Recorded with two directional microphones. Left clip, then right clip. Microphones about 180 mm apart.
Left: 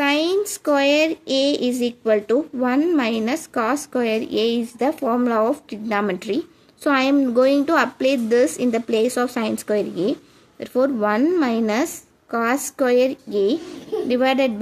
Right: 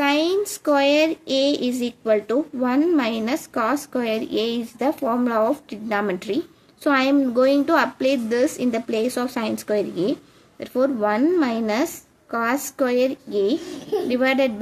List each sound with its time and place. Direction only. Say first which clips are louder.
0.0 s speech: left 1 dB; 20° left (ahead or behind)